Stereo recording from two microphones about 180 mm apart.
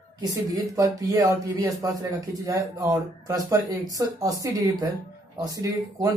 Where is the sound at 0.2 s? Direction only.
20° right (ahead or behind).